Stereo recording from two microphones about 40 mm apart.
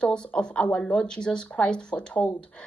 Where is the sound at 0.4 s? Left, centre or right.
Left.